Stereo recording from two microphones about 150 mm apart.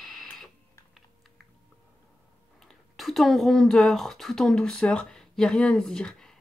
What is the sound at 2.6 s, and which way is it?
Speech, centre (ahead or behind).